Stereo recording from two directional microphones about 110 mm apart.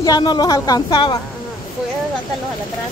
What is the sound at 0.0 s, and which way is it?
Speech, 40° left (ahead or behind).